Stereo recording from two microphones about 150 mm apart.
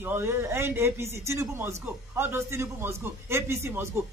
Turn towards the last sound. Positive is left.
turn(degrees=-15)  # may be behind; listen again after turning